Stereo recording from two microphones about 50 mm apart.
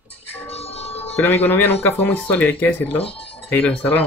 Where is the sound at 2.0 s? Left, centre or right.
Left.